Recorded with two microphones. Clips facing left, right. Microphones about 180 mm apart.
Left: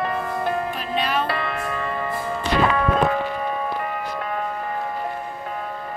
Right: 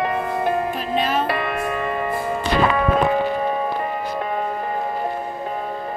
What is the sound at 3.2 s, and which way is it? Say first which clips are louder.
Music: right 4 dB; 30° right (ahead or behind).